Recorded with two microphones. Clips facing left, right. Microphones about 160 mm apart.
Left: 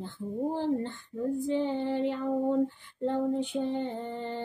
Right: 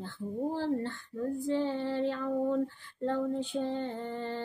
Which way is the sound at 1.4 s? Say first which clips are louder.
Even; 20° left (ahead or behind).